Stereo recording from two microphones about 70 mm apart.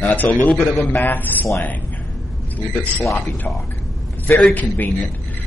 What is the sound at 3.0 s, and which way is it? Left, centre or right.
Speech, centre.